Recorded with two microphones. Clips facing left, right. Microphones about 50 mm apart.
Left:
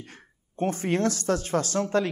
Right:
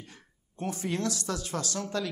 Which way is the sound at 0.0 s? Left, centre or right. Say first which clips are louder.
Left 5 dB; left.